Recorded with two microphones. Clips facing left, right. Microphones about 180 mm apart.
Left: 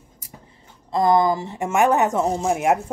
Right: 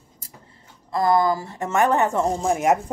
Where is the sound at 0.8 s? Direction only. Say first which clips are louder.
Left 2 dB; 20° left (ahead or behind).